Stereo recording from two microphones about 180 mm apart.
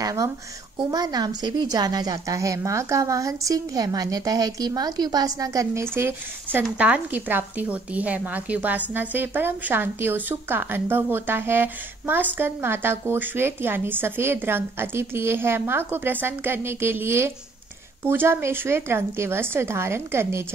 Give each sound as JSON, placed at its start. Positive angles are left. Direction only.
{"t": 0.0, "sound": "a woman's voice", "side_deg": -20}